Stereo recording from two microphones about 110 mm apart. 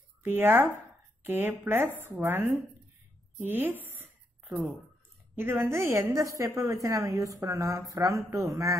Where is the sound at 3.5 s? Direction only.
20° right (ahead or behind).